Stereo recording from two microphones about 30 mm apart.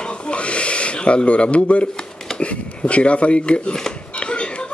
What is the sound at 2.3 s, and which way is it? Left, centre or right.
Speech, left.